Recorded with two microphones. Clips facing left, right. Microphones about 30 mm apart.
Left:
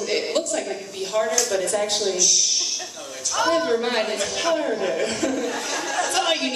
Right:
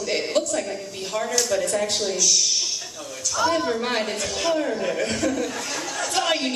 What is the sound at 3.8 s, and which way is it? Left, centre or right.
A woman's voice, centre.